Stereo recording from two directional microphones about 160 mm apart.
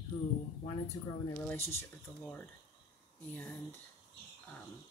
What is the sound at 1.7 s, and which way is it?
Speech, 10° left (ahead or behind).